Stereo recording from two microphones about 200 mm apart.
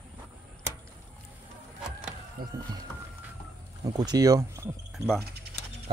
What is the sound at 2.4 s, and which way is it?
Speech, 45° right (ahead or behind).